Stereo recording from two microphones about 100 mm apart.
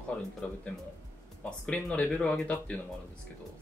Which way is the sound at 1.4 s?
10° left (ahead or behind).